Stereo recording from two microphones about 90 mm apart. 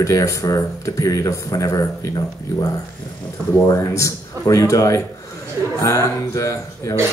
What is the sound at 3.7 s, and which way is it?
Speech, 35° left (ahead or behind).